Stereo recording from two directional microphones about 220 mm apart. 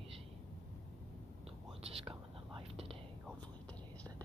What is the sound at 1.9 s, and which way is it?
Whispering, 25° right (ahead or behind).